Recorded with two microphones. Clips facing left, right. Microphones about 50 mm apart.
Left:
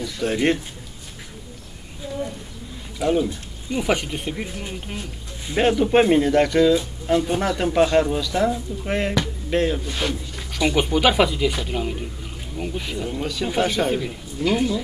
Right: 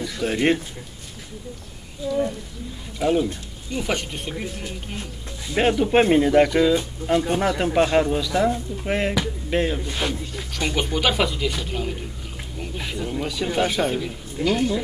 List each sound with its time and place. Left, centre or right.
0.0 s speech: centre
2.0 s speech: left
3.0 s speech: centre
3.7 s speech: centre
5.6 s speech: centre
10.5 s speech: centre